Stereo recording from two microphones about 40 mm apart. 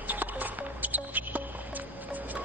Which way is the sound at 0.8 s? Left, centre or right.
Right.